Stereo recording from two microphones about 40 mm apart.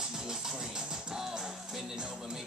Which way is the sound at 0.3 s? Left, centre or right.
Centre.